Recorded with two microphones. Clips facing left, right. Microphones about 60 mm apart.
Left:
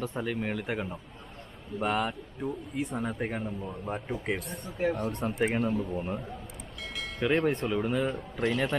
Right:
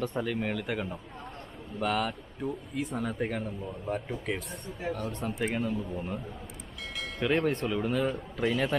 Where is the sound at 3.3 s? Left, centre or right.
Centre.